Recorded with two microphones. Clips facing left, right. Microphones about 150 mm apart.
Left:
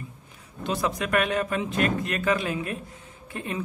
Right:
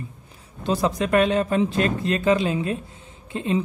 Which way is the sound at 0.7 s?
30° right (ahead or behind).